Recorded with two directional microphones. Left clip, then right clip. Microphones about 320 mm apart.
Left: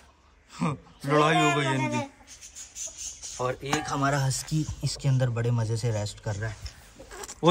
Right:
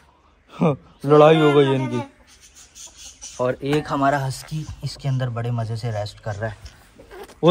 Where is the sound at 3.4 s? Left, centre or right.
Centre.